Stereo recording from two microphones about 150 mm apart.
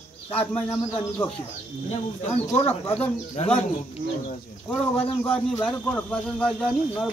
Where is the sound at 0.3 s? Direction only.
10° left (ahead or behind).